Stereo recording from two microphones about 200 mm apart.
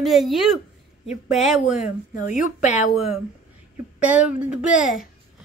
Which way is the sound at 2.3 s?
35° left (ahead or behind).